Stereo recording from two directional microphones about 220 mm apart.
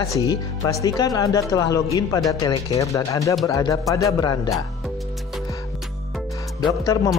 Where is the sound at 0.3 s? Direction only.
15° left (ahead or behind).